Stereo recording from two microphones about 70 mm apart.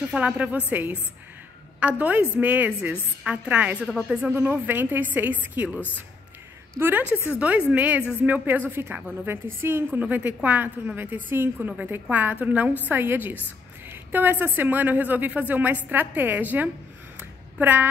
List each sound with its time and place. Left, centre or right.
0.1 s a woman's voice: centre
6.8 s a woman's voice: right
17.2 s a sound: right